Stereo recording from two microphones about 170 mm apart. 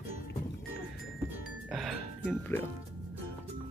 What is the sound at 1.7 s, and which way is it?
Music, centre (ahead or behind).